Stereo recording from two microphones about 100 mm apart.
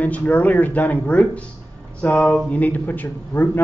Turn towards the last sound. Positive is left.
turn(degrees=15)  # may be behind; listen again after turning